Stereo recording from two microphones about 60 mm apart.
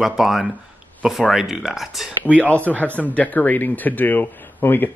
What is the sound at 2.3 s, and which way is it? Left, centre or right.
Speech, left.